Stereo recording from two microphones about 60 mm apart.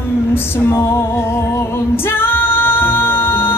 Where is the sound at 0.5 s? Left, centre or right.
Left.